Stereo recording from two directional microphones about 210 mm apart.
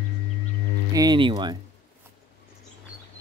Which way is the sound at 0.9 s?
20° right (ahead or behind).